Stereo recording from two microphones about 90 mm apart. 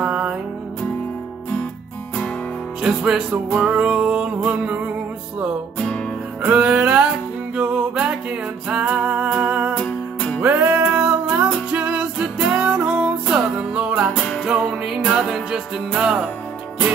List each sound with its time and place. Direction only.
0.0 s music: 15° right (ahead or behind)
2.8 s music: 10° right (ahead or behind)
3.7 s music: 10° right (ahead or behind)
5.8 s music: 10° left (ahead or behind)
6.4 s music: 10° right (ahead or behind)
9.8 s music: 15° left (ahead or behind)
10.4 s music: 20° right (ahead or behind)
14.1 s music: 5° left (ahead or behind)
14.4 s music: 10° right (ahead or behind)